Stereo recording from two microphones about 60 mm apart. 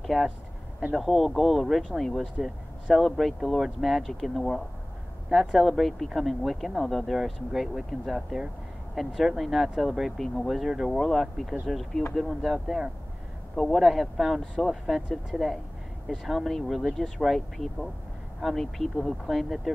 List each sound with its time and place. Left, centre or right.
0.0 s speech: centre